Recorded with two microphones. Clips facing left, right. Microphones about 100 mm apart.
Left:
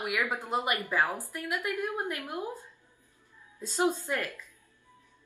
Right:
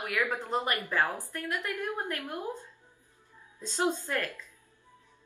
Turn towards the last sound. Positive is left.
turn(degrees=15)  # may be behind; listen again after turning